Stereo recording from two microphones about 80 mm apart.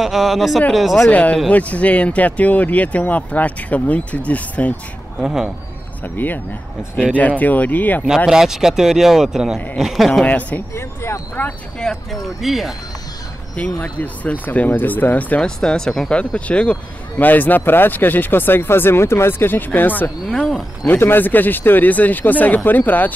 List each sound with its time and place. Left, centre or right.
0.0 s speech: centre
1.1 s speech: centre
5.2 s speech: centre
6.1 s speech: left
8.3 s speech: centre
10.2 s speech: centre
10.7 s speech: left
11.8 s speech: centre
12.4 s speech: centre
13.7 s speech: centre
20.2 s speech: centre
20.8 s speech: left